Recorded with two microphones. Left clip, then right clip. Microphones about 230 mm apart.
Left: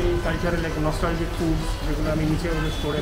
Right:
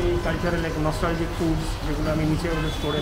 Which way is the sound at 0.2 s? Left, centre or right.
Centre.